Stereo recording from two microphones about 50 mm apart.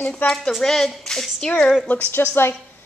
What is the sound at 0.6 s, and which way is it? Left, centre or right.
Speech, centre.